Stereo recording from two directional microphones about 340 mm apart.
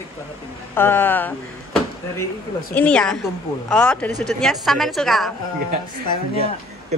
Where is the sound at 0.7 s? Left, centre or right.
Centre.